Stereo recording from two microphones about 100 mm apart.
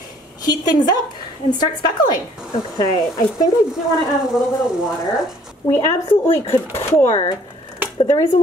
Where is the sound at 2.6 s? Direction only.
45° left (ahead or behind).